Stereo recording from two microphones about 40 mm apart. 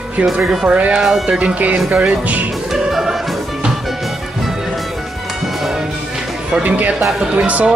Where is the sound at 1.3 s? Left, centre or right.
Right.